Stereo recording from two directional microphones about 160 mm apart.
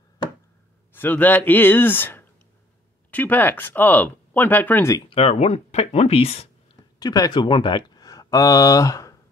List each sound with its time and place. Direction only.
0.9 s speech: 10° left (ahead or behind)
5.1 s speech: 40° left (ahead or behind)
7.0 s speech: 25° left (ahead or behind)